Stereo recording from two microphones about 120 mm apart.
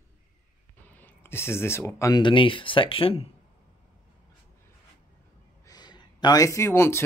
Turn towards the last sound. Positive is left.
turn(degrees=25)  # may be behind; listen again after turning